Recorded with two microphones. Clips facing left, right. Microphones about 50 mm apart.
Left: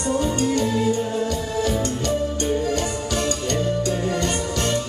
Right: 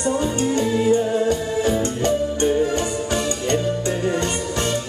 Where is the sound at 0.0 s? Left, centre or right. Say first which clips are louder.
Right 1 dB; right.